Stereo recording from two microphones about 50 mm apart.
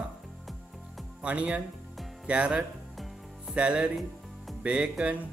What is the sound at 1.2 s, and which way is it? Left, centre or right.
Speech, right.